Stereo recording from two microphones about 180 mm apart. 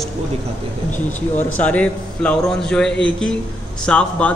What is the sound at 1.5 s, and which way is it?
A man's voice, 5° left (ahead or behind).